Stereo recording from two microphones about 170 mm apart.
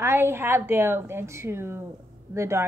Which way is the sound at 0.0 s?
15° right (ahead or behind).